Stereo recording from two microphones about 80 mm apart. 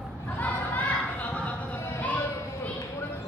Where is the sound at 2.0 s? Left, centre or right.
Left.